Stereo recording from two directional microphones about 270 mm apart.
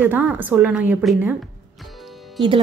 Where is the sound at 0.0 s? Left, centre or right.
Centre.